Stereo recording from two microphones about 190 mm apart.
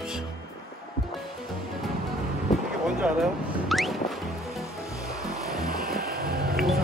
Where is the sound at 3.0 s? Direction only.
5° right (ahead or behind).